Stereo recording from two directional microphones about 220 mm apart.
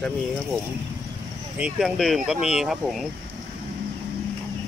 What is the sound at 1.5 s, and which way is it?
Speech, 5° right (ahead or behind).